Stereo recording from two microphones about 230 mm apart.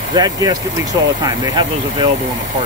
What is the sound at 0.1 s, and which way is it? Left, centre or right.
Speech, centre.